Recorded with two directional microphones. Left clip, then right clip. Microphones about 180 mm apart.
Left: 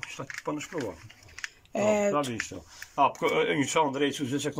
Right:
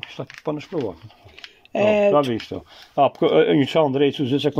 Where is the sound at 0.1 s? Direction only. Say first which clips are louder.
Right 8 dB; 35° right (ahead or behind).